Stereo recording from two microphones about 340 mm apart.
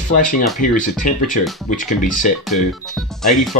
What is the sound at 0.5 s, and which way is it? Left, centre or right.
Speech, left.